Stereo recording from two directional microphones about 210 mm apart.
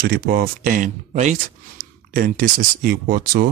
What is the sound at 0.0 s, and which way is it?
Speech, 45° right (ahead or behind).